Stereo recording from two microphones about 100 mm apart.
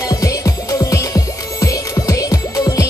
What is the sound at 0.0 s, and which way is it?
Music, 35° left (ahead or behind).